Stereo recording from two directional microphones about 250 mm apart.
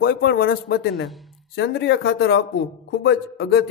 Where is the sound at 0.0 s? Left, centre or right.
Left.